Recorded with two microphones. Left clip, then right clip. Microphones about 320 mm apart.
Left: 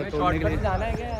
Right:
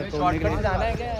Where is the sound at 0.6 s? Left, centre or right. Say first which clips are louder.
Right 2 dB; right.